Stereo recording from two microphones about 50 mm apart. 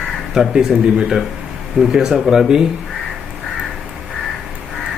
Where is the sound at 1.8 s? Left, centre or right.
Centre.